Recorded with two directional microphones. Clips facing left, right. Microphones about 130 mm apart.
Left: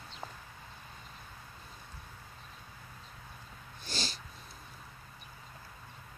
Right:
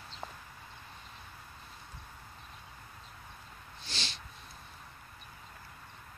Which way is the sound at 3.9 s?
40° left (ahead or behind).